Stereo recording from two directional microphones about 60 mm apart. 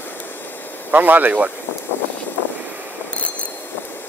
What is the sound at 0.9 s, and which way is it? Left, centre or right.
Speech, right.